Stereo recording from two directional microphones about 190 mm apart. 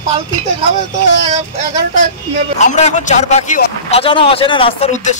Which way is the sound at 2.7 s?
40° left (ahead or behind).